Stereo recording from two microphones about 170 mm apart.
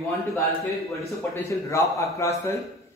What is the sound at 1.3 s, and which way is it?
A man's voice, 15° left (ahead or behind).